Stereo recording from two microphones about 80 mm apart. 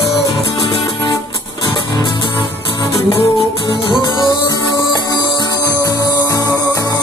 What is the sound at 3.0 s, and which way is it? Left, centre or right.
Music, left.